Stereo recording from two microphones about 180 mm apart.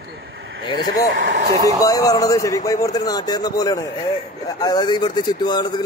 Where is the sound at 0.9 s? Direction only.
90° right.